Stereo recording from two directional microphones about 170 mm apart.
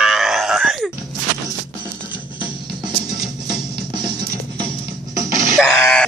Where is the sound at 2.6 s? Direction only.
25° right (ahead or behind).